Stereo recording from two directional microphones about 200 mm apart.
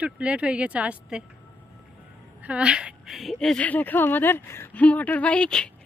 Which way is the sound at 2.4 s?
5° right (ahead or behind).